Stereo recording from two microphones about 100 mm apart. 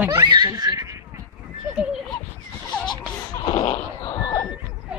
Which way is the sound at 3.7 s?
35° left (ahead or behind).